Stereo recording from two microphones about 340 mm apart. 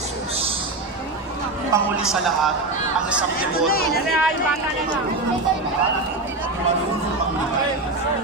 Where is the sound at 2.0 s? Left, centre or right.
Centre.